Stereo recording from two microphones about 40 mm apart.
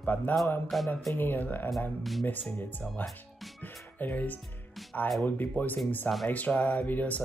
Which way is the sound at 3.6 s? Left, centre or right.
Left.